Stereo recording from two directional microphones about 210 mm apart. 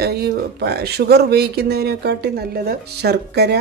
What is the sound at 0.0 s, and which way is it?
Speech, 50° right (ahead or behind).